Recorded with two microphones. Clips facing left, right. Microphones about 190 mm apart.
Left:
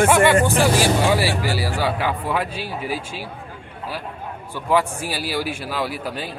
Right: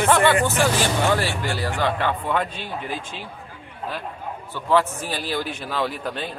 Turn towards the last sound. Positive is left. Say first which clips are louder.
# even
turn(degrees=5)  # may be behind; listen again after turning